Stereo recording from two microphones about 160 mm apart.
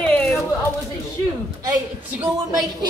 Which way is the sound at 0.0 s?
10° left (ahead or behind).